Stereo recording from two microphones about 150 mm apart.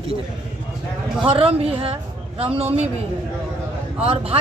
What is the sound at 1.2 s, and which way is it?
Speech, 40° right (ahead or behind).